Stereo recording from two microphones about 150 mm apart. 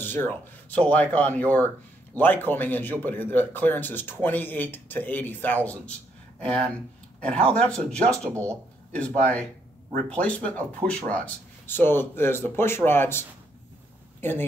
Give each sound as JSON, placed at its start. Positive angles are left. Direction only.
{"t": 0.0, "sound": "a man's voice", "side_deg": 15}
{"t": 8.3, "sound": "speech", "side_deg": -20}
{"t": 10.0, "sound": "a man's voice", "side_deg": 10}
{"t": 14.2, "sound": "a man's voice", "side_deg": 15}